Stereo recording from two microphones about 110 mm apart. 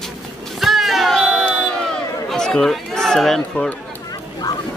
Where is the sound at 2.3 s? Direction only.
5° left (ahead or behind).